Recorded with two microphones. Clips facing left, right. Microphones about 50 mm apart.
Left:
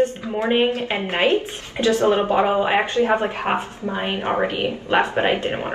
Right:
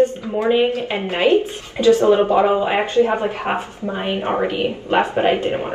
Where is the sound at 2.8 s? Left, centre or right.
Left.